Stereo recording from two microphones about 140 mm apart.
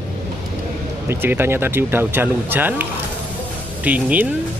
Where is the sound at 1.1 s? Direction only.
15° right (ahead or behind).